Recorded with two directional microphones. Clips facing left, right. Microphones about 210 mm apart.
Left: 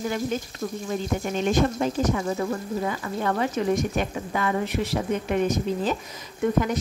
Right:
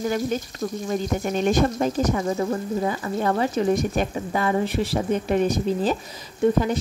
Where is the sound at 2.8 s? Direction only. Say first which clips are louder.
Right 3 dB; 30° right (ahead or behind).